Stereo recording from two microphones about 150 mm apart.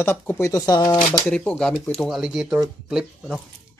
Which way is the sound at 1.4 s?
5° left (ahead or behind).